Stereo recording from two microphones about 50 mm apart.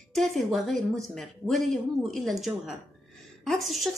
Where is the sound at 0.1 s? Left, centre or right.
Centre.